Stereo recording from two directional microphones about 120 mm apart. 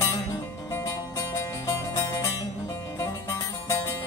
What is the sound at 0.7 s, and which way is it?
Music, 25° left (ahead or behind).